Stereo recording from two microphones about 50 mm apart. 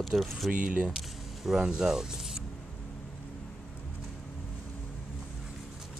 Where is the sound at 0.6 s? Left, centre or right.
Right.